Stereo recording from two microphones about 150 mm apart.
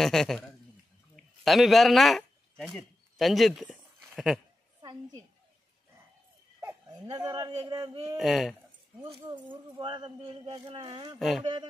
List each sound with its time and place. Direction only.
0.0 s speech: centre (ahead or behind)
7.1 s speech: 25° right (ahead or behind)
8.2 s speech: centre (ahead or behind)
9.0 s speech: 30° right (ahead or behind)
11.1 s speech: centre (ahead or behind)